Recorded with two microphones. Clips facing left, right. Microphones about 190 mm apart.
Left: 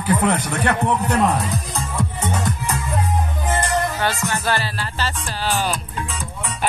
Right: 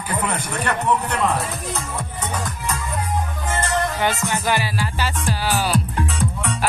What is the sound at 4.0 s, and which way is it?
Music, 15° right (ahead or behind).